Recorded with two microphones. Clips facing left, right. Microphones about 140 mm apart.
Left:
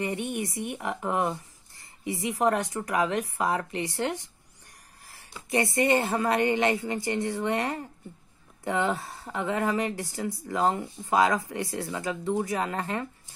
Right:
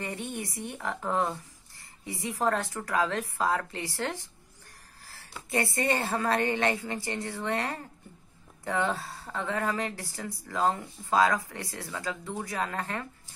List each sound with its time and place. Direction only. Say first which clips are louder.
0.0 s a woman's voice: left 5 dB; 20° left (ahead or behind)
5.5 s a woman's voice: left 4 dB; 20° left (ahead or behind)